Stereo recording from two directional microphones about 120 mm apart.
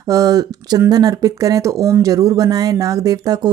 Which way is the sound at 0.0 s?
30° right (ahead or behind).